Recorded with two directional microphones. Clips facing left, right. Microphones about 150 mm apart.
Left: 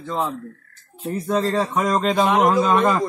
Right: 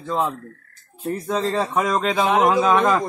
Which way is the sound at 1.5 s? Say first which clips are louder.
Left 1 dB; centre (ahead or behind).